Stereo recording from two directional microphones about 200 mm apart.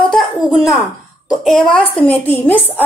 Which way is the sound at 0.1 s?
Centre (ahead or behind).